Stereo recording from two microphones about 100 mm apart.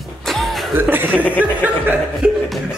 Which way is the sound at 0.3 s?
Centre (ahead or behind).